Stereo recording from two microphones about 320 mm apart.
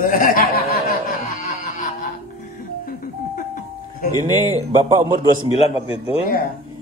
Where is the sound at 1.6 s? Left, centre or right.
Left.